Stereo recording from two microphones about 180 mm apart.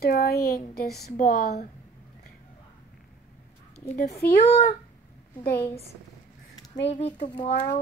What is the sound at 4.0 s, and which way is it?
Speech, 55° left (ahead or behind).